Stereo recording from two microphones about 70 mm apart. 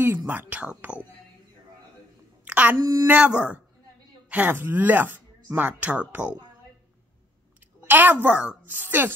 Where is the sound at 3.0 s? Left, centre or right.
Right.